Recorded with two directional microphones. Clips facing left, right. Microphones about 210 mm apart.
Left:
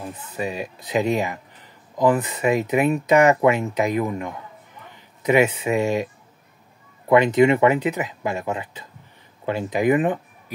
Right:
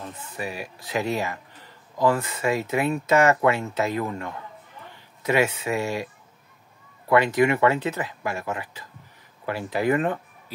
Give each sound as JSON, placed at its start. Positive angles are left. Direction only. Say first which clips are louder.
{"t": 0.3, "sound": "speech", "louder": "left 6 dB", "side_deg": 20}
{"t": 7.1, "sound": "speech", "louder": "left 4 dB", "side_deg": 20}